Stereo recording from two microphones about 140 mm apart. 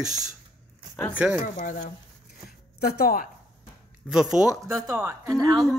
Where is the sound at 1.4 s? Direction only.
65° left (ahead or behind).